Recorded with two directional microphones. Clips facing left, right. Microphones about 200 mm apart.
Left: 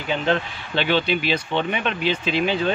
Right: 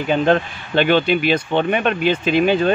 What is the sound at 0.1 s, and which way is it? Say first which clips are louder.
Speech: right 6 dB; 50° right (ahead or behind).